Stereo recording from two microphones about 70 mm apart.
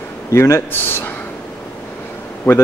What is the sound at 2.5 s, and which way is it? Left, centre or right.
Speech, left.